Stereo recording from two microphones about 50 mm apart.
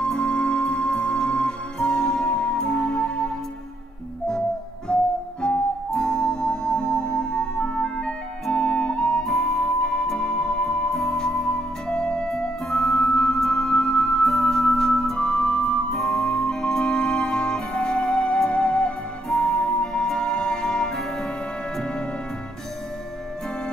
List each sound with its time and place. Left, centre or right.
0.0 s music: centre
4.9 s music: centre
8.5 s flute: left
9.2 s music: centre
10.9 s flute: centre
12.6 s music: centre
12.9 s music: centre
15.9 s music: centre
16.3 s music: centre
19.2 s flute: centre